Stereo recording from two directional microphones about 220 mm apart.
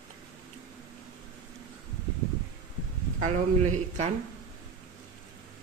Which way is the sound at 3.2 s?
30° right (ahead or behind).